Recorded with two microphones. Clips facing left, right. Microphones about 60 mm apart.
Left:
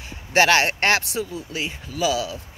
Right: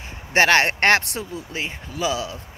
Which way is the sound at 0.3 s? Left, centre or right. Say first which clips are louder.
Right 1 dB; right.